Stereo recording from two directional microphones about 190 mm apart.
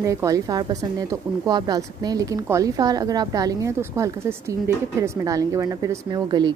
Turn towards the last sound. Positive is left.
turn(degrees=-25)  # may be behind; listen again after turning